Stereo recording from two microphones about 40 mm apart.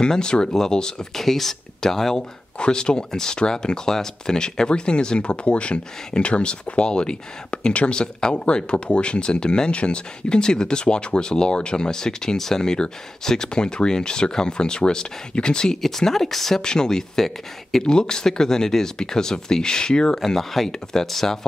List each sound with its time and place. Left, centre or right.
0.0 s speech: left
1.1 s speech: centre
2.6 s speech: left
15.8 s speech: centre
16.6 s speech: centre
17.8 s speech: centre
20.2 s speech: centre